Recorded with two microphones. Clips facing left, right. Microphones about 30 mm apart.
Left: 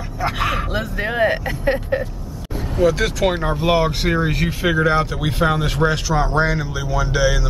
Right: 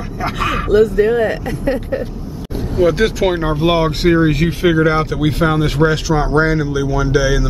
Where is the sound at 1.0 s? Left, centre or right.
Left.